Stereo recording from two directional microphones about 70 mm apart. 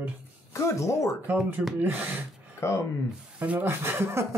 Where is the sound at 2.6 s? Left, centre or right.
Left.